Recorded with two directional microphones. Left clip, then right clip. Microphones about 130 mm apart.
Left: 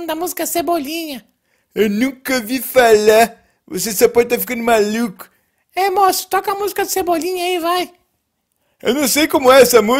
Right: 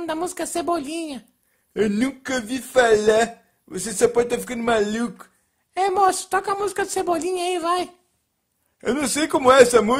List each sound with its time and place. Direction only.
0.0 s a woman's voice: 15° left (ahead or behind)